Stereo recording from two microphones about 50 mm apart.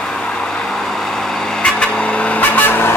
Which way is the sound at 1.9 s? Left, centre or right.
Left.